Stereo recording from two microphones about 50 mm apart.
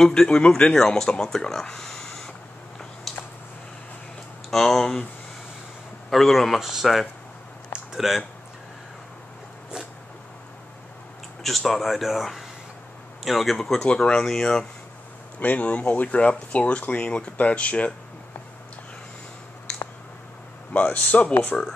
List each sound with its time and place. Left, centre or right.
0.0 s speech: centre
3.1 s a sound: centre
4.5 s speech: centre
6.0 s speech: centre
11.4 s speech: centre
15.3 s speech: left
20.7 s speech: left
21.5 s speech: centre